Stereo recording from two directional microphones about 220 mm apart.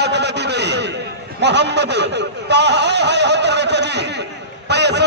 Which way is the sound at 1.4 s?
50° right (ahead or behind).